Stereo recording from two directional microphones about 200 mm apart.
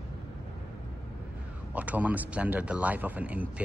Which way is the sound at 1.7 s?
5° right (ahead or behind).